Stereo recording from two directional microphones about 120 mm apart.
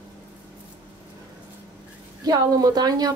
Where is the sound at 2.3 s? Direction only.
30° right (ahead or behind).